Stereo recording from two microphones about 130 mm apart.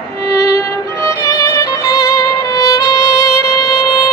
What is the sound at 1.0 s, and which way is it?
Violin, 25° left (ahead or behind).